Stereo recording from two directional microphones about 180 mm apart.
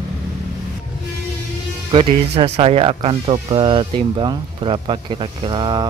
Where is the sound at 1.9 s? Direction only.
35° right (ahead or behind).